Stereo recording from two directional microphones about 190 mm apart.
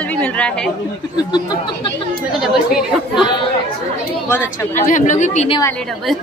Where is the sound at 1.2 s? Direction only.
20° left (ahead or behind).